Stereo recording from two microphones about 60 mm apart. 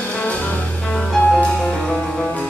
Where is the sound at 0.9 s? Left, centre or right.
Centre.